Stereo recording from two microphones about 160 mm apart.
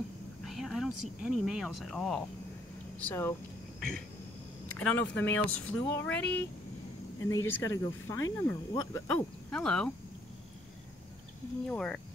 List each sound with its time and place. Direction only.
0.5 s speech: centre (ahead or behind)
3.1 s speech: 15° left (ahead or behind)
4.7 s speech: 10° left (ahead or behind)
7.2 s speech: 20° left (ahead or behind)
11.6 s speech: 5° left (ahead or behind)